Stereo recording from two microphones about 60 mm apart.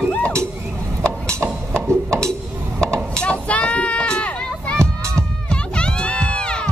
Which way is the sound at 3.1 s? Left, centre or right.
Centre.